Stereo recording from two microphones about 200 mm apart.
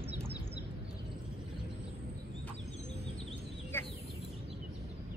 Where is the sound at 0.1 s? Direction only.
55° left (ahead or behind).